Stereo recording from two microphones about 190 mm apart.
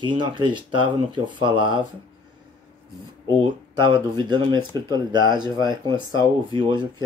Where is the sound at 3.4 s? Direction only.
25° right (ahead or behind).